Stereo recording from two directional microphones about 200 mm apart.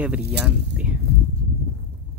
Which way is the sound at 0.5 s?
5° right (ahead or behind).